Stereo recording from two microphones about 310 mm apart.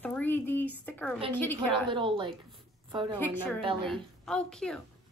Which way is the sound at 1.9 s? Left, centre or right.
Centre.